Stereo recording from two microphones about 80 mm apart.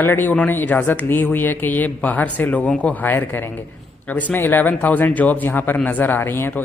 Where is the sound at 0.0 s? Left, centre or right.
Left.